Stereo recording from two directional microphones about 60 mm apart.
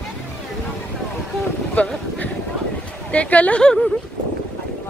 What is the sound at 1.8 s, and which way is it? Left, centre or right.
Speech, left.